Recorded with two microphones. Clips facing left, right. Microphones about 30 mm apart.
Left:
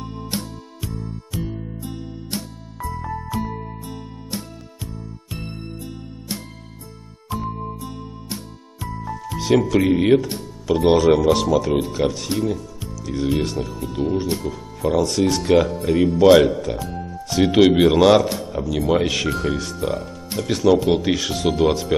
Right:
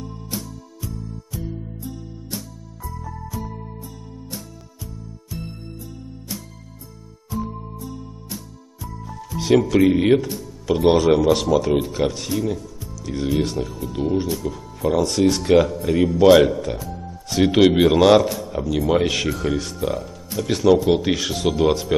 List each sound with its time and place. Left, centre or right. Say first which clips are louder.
0.0 s music: left 3 dB; left
7.2 s music: left 2 dB; left
9.4 s speech: right 2 dB; centre